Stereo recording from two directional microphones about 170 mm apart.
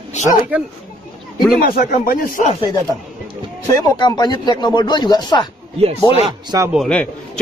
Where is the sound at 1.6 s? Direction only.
60° left (ahead or behind).